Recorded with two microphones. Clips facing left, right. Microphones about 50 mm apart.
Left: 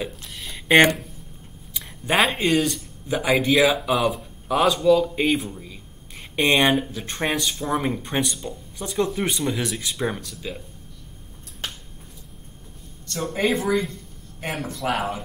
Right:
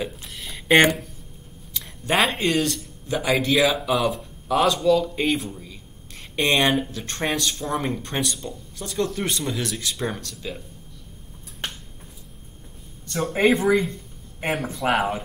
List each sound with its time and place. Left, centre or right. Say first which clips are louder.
0.0 s a sound: right 1 dB; centre
1.7 s speech: even; centre
13.0 s speech: right 4 dB; right